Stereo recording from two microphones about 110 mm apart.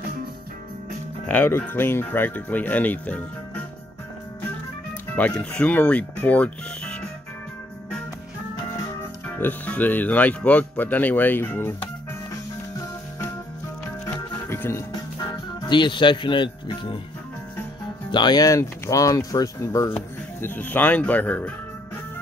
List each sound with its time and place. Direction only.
1.2 s speech: 15° left (ahead or behind)
5.1 s speech: 10° left (ahead or behind)
9.4 s speech: 15° left (ahead or behind)
14.0 s music: 25° left (ahead or behind)
15.7 s speech: 45° left (ahead or behind)
18.1 s speech: 40° left (ahead or behind)
20.3 s speech: 20° left (ahead or behind)